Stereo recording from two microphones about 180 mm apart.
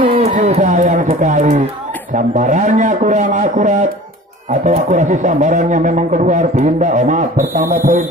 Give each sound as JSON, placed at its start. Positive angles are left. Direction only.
{"t": 0.2, "sound": "a man's voice", "side_deg": -40}